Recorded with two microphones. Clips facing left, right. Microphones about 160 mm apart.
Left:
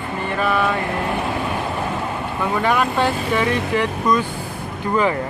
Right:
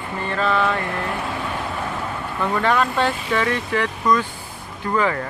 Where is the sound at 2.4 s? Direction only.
10° left (ahead or behind).